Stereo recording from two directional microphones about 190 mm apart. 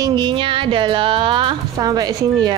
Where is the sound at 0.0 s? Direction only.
25° right (ahead or behind).